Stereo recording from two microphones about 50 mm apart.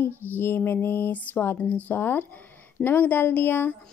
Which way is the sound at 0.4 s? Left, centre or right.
Left.